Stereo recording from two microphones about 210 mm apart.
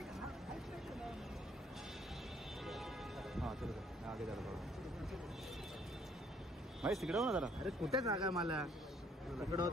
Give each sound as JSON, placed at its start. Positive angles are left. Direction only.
{"t": 2.6, "sound": "music", "side_deg": 0}
{"t": 6.8, "sound": "speech", "side_deg": 0}
{"t": 8.0, "sound": "speech", "side_deg": -15}
{"t": 8.4, "sound": "speech", "side_deg": 0}
{"t": 9.4, "sound": "speech", "side_deg": -15}